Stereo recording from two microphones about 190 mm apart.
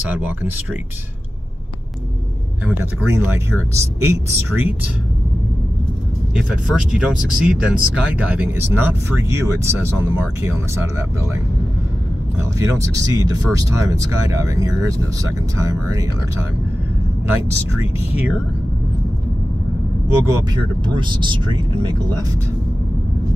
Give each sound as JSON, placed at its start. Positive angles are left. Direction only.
{"t": 0.1, "sound": "speech", "side_deg": -10}
{"t": 2.6, "sound": "speech", "side_deg": -10}
{"t": 6.3, "sound": "speech", "side_deg": -5}
{"t": 12.4, "sound": "speech", "side_deg": -15}
{"t": 20.9, "sound": "speech", "side_deg": -25}